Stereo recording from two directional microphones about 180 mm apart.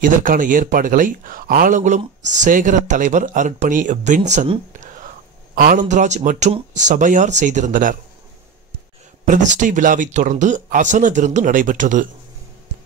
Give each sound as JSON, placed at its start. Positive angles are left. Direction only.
{"t": 0.0, "sound": "a man's voice", "side_deg": -50}
{"t": 5.5, "sound": "a man's voice", "side_deg": -55}
{"t": 9.2, "sound": "a man's voice", "side_deg": -45}